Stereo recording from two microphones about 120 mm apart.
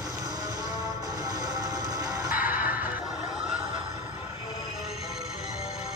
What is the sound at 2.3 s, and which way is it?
Music, 15° right (ahead or behind).